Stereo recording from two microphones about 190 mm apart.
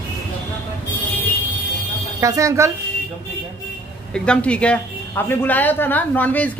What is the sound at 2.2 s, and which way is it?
Speech, 15° right (ahead or behind).